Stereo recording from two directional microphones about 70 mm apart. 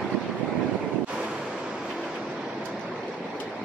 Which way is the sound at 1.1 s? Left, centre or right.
Centre.